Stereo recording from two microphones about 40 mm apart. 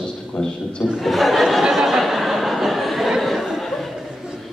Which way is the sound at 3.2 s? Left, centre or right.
Centre.